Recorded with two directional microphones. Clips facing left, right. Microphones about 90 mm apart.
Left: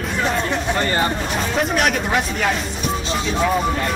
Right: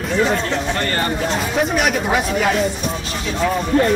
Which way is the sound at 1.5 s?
Centre (ahead or behind).